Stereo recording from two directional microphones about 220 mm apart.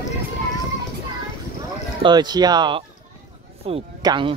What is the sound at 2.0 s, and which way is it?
Speech, 20° right (ahead or behind).